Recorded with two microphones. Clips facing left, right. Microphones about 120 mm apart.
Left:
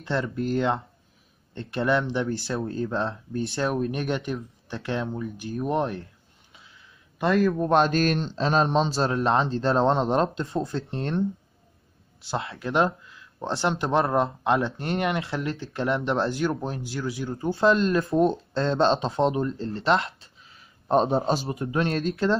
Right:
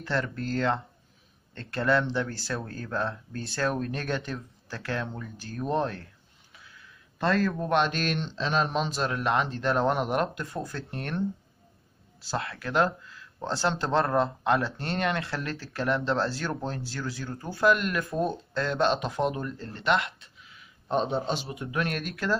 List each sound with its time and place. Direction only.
0.0 s speech: 25° left (ahead or behind)
7.2 s speech: 15° left (ahead or behind)
7.7 s speech: 40° left (ahead or behind)